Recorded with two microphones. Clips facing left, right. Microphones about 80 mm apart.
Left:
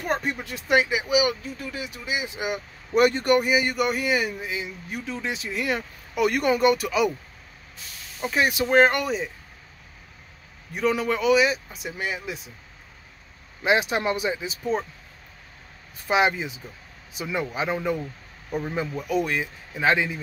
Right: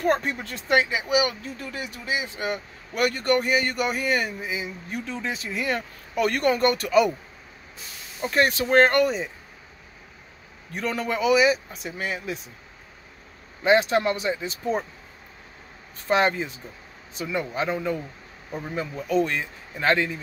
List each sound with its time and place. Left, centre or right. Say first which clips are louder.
0.0 s speech: right 3 dB; centre
2.9 s speech: left 4 dB; left
3.3 s speech: left 1 dB; centre
3.7 s speech: left 1 dB; centre
8.2 s speech: right 1 dB; centre
10.7 s speech: left 4 dB; centre
13.6 s speech: right 3 dB; centre
16.1 s speech: even; centre